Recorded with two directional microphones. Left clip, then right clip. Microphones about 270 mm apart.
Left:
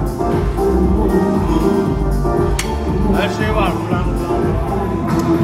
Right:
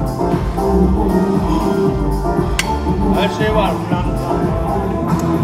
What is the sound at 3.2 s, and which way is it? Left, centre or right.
Vehicle, right.